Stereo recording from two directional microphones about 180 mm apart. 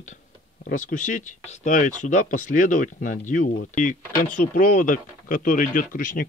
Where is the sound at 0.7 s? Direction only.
50° left (ahead or behind).